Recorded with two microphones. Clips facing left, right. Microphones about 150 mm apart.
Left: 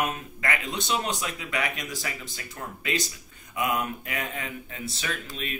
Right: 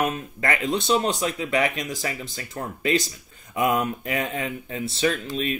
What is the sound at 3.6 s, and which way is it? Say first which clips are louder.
Speech: right 5 dB; 30° right (ahead or behind).